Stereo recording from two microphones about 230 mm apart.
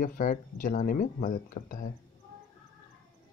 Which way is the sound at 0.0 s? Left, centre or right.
Left.